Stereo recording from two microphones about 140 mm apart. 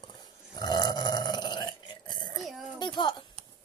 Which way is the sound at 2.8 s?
30° left (ahead or behind).